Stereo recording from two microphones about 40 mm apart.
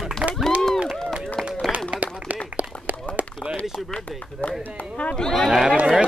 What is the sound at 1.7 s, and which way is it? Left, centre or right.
Clapping, centre.